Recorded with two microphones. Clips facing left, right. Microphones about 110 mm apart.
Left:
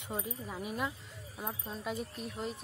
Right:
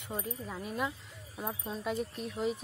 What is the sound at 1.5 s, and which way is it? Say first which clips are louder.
Speech: right 3 dB; centre (ahead or behind).